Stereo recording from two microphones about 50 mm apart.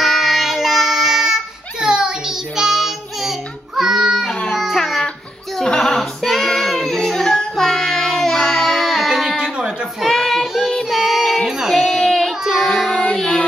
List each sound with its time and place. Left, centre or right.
0.0 s child singing: centre
4.5 s music: centre
5.6 s child singing: centre
8.4 s music: centre
9.4 s a sound: centre
10.0 s child singing: centre
11.4 s a sound: centre
12.6 s child singing: centre
13.1 s music: centre